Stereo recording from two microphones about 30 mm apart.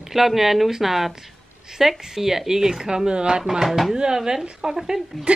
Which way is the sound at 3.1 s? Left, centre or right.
Right.